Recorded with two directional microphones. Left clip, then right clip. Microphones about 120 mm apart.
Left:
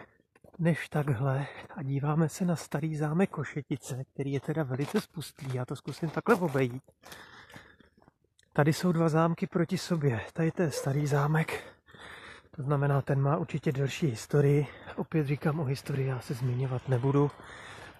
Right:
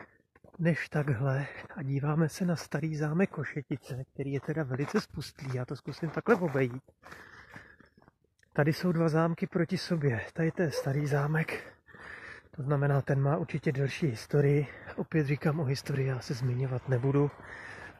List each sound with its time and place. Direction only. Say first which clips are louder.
0.6 s speech: even; 25° left (ahead or behind)
4.8 s speech: even; 5° left (ahead or behind)
5.5 s speech: left 2 dB; 25° left (ahead or behind)
8.5 s speech: left 2 dB; 35° left (ahead or behind)
15.0 s speech: right 1 dB; 5° left (ahead or behind)
16.4 s speech: left 1 dB; 20° left (ahead or behind)